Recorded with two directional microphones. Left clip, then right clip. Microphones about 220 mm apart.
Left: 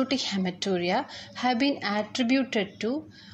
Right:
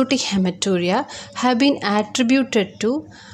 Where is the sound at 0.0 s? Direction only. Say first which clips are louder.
Right 8 dB; 20° right (ahead or behind).